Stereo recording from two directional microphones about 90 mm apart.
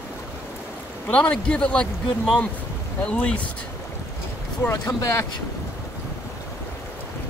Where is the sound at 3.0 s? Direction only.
15° left (ahead or behind).